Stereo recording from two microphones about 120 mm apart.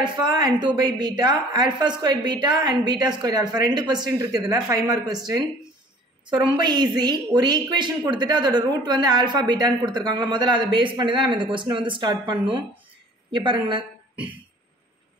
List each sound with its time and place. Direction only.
0.0 s a woman's voice: 40° right (ahead or behind)